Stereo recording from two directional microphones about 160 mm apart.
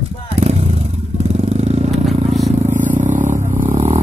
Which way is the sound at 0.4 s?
40° right (ahead or behind).